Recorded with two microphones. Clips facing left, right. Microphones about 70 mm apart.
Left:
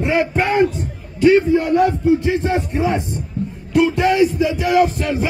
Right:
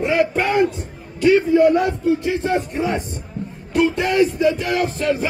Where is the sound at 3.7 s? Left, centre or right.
Centre.